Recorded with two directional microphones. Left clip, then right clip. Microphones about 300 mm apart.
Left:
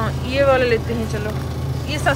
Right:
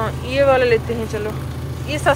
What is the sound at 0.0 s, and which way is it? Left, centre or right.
Speech, centre.